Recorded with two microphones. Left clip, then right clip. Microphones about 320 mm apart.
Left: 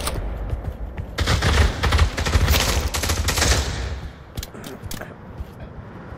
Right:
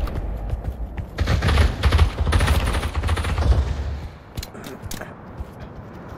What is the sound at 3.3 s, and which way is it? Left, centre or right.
Machine gun, left.